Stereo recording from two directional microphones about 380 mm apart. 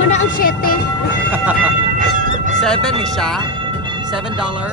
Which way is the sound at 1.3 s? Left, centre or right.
Centre.